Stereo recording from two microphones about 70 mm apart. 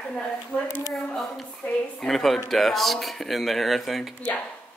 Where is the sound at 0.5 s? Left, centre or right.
Left.